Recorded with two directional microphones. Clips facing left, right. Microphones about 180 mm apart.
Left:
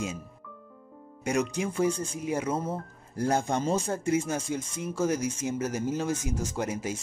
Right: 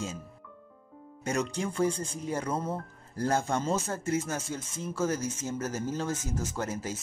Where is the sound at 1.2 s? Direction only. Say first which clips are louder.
Left 3 dB; 10° left (ahead or behind).